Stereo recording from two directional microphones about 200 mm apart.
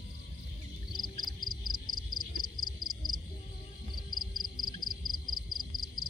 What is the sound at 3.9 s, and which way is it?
Music, 20° left (ahead or behind).